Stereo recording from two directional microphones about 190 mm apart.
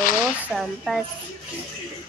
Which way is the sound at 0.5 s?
Centre (ahead or behind).